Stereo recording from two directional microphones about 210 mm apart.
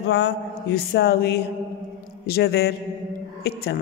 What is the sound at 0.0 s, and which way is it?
A woman's voice, 55° left (ahead or behind).